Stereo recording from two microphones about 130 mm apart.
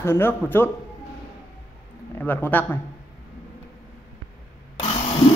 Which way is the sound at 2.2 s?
15° left (ahead or behind).